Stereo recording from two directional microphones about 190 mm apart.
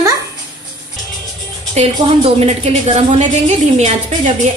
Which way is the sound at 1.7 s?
35° right (ahead or behind).